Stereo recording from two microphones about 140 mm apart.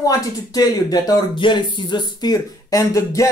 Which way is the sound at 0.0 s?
25° left (ahead or behind).